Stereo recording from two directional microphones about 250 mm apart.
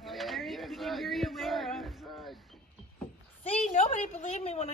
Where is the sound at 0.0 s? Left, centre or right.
Centre.